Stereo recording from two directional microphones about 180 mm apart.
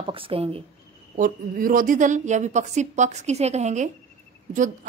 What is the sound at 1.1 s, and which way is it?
Speech, 50° right (ahead or behind).